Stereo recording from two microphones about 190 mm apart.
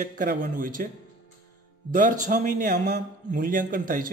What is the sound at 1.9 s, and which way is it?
Speech, 45° right (ahead or behind).